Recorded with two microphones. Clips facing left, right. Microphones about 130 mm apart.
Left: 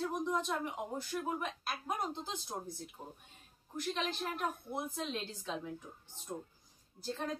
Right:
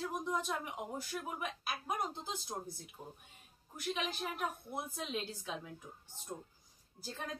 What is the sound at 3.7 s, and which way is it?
A woman's voice, 10° right (ahead or behind).